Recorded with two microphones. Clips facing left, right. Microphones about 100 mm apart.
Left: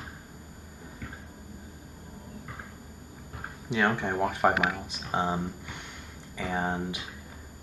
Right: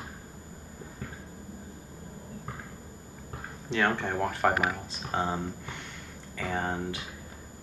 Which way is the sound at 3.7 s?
10° left (ahead or behind).